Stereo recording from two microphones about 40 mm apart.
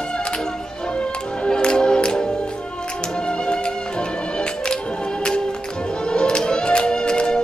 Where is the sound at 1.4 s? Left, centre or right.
Left.